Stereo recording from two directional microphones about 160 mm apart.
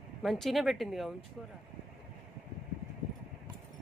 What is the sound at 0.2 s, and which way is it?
Speech, centre (ahead or behind).